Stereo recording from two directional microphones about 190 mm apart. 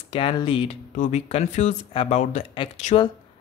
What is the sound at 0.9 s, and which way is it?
Speech, 40° left (ahead or behind).